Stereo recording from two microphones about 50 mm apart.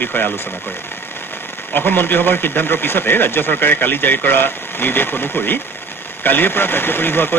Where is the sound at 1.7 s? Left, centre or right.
Left.